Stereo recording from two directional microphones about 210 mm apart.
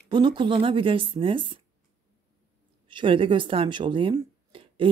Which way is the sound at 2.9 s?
25° right (ahead or behind).